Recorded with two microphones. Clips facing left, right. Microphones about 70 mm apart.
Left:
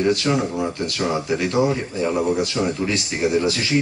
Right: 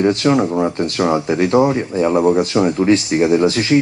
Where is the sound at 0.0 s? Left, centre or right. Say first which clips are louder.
Right 5 dB; right.